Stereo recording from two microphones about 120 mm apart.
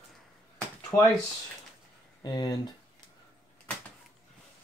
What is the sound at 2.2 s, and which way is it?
Speech, 35° left (ahead or behind).